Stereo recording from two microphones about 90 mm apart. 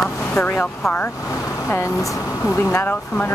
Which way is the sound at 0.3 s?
20° left (ahead or behind).